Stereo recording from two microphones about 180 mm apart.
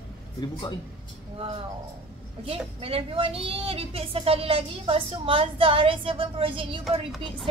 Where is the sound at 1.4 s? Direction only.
30° right (ahead or behind).